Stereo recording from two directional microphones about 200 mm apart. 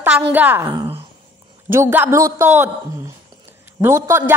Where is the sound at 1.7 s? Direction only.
10° right (ahead or behind).